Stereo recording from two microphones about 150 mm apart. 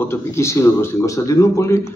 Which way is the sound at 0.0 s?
15° left (ahead or behind).